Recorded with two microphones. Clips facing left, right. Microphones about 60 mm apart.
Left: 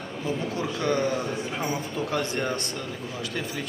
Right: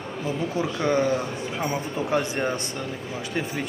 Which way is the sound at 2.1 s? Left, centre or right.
Right.